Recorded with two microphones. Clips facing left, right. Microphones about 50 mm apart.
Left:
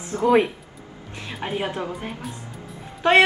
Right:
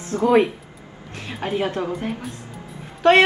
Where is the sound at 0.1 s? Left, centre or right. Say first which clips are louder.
Right 2 dB; right.